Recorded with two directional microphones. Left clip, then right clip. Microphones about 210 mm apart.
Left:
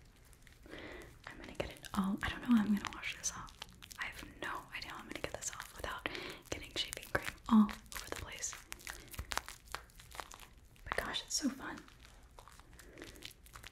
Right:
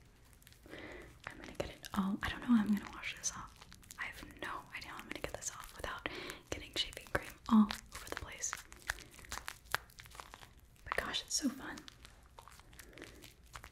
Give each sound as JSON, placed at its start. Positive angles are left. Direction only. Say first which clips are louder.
{"t": 0.7, "sound": "whispering", "louder": "even", "side_deg": 0}
{"t": 9.0, "sound": "crumpling", "louder": "left 4 dB", "side_deg": -35}
{"t": 11.0, "sound": "whispering", "louder": "right 1 dB", "side_deg": 0}